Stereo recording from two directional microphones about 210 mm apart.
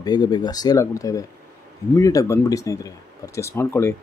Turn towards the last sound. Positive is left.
turn(degrees=10)  # may be behind; listen again after turning